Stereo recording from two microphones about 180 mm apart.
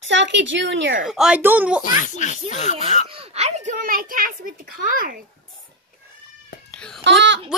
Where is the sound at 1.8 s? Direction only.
45° left (ahead or behind).